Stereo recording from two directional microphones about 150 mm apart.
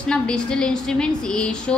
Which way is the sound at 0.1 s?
5° left (ahead or behind).